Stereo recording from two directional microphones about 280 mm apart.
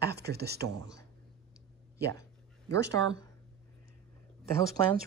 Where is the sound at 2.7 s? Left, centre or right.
Centre.